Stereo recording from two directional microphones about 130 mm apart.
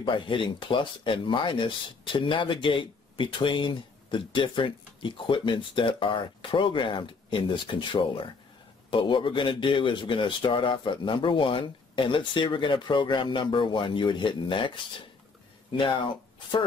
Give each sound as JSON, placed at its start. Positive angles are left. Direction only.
{"t": 0.0, "sound": "speech", "side_deg": 40}